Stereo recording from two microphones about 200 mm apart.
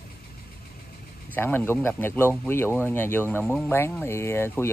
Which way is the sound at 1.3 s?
10° left (ahead or behind).